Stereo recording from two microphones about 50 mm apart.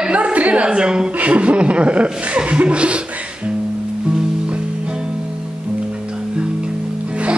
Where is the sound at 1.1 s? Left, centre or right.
Right.